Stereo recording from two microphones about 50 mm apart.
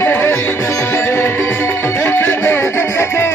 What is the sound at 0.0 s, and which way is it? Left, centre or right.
Music, left.